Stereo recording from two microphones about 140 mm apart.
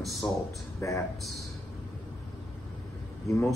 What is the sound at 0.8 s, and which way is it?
Speech, 20° left (ahead or behind).